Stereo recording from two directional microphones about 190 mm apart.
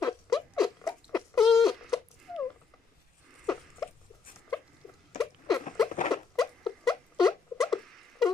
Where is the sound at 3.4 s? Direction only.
Centre (ahead or behind).